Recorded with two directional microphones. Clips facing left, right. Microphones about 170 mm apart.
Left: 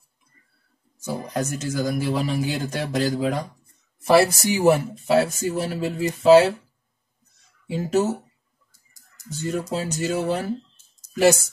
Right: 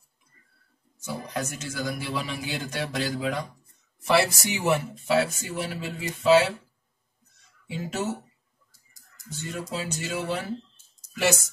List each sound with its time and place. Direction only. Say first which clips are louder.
1.0 s speech: left 5 dB; 40° left (ahead or behind)
7.6 s speech: left 8 dB; 40° left (ahead or behind)
9.3 s speech: left 7 dB; 40° left (ahead or behind)